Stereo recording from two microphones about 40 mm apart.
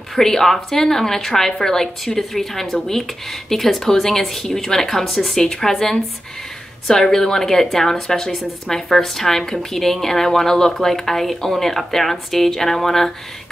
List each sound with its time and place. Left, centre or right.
0.1 s a woman's voice: centre